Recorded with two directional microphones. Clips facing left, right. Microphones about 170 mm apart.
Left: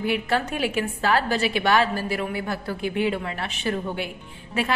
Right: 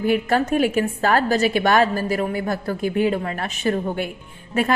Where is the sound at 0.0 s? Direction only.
45° right (ahead or behind).